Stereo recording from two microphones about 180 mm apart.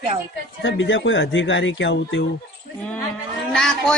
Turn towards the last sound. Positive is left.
turn(degrees=5)  # may be behind; listen again after turning